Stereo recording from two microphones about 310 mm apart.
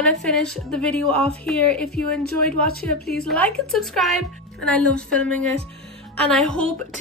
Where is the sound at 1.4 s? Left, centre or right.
Centre.